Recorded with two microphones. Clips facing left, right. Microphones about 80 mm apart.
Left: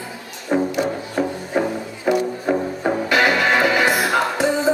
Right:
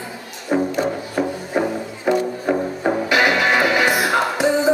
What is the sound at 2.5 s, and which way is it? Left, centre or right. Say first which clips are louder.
Music: right 1 dB; centre.